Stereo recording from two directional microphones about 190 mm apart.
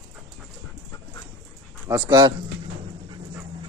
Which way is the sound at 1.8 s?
20° right (ahead or behind).